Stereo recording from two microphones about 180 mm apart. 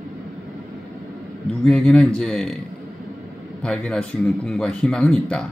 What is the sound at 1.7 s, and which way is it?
Speech, 5° left (ahead or behind).